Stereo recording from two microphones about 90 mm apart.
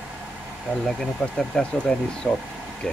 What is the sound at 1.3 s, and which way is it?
Speech, 5° left (ahead or behind).